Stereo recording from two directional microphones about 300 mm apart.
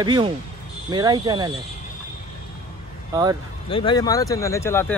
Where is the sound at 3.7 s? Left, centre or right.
Centre.